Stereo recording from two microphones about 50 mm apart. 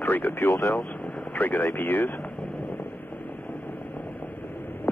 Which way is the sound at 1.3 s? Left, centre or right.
Left.